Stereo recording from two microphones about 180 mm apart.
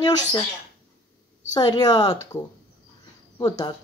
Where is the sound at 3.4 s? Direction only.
20° left (ahead or behind).